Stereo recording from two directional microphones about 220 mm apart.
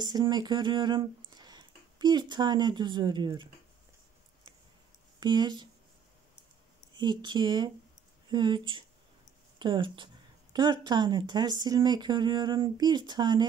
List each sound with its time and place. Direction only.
0.0 s speech: 20° right (ahead or behind)
5.2 s speech: 20° right (ahead or behind)
7.0 s speech: 20° right (ahead or behind)